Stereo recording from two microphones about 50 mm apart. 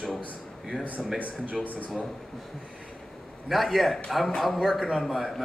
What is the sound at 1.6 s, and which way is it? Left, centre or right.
Speech, left.